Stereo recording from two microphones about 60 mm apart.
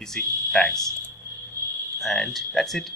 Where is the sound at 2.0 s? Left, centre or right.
Centre.